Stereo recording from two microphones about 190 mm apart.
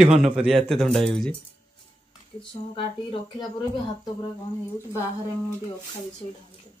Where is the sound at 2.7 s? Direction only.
25° left (ahead or behind).